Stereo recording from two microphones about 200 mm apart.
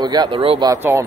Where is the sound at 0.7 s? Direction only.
15° right (ahead or behind).